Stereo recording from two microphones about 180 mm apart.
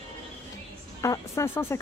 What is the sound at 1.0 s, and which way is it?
Speech, 15° left (ahead or behind).